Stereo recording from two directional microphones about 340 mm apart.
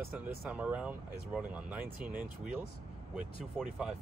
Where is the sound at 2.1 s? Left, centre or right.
Right.